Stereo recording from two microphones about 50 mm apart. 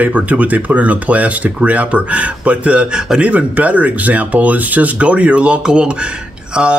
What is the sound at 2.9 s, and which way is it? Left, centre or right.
Speech, centre.